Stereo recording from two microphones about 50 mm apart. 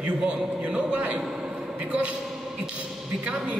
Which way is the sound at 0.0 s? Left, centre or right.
Right.